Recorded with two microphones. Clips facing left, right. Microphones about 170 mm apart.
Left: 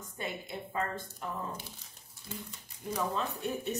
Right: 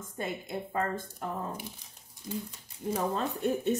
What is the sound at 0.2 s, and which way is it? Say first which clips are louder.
Speech: right 4 dB; 45° right (ahead or behind).